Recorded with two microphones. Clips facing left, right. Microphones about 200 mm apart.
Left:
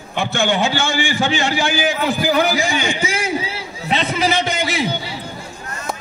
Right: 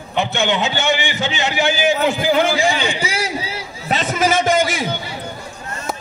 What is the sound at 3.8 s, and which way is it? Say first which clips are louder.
A man's voice: right 1 dB; 45° right (ahead or behind).